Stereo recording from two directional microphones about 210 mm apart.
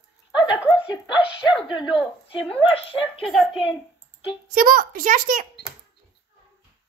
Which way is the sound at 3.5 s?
25° left (ahead or behind).